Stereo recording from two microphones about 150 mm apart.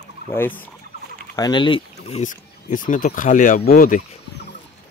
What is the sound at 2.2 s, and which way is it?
Speech, 60° left (ahead or behind).